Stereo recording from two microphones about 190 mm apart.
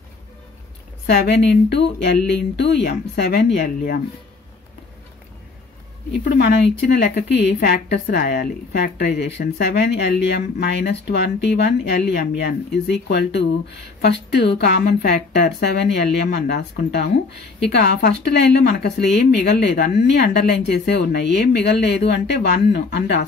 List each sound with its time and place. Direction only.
1.0 s a woman's voice: 60° left (ahead or behind)
7.0 s a woman's voice: 60° left (ahead or behind)